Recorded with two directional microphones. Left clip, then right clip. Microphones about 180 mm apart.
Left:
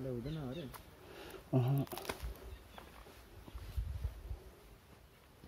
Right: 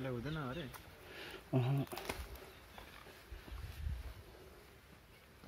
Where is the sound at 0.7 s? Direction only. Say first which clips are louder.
Right 1 dB; 20° left (ahead or behind).